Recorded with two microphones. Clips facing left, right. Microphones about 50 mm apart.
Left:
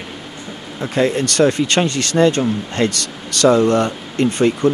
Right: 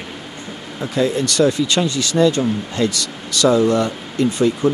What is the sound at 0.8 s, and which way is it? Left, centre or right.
Speech, left.